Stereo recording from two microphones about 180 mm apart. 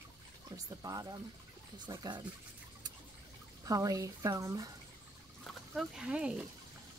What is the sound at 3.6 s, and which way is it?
Speech, 20° right (ahead or behind).